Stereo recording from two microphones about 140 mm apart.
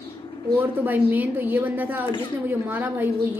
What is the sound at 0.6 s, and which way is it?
A woman's voice, 10° right (ahead or behind).